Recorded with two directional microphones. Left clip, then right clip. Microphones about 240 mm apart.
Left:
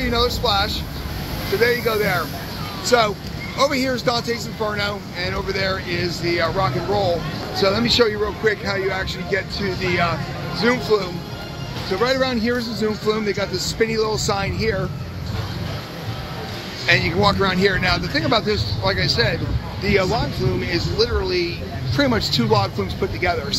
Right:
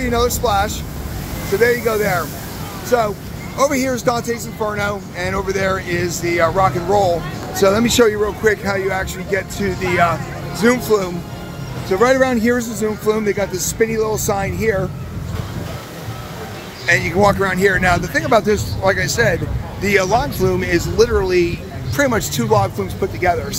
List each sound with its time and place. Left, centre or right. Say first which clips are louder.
0.0 s speech: right 3 dB; centre
3.5 s speech: right 3 dB; centre
8.2 s speech: right 4 dB; centre
12.8 s speech: right 3 dB; centre
17.2 s speech: right 3 dB; centre
21.9 s speech: right 2 dB; centre